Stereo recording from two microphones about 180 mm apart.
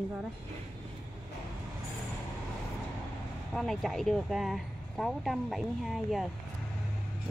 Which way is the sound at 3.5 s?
Centre (ahead or behind).